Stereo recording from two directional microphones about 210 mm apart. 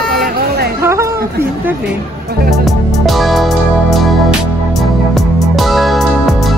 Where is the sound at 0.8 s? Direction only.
10° right (ahead or behind).